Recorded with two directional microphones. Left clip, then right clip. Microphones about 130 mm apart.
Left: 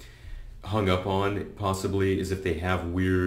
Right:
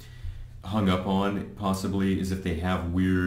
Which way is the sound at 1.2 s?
45° left (ahead or behind).